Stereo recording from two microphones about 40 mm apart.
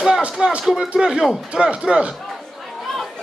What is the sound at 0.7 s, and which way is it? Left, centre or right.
A man's voice, centre.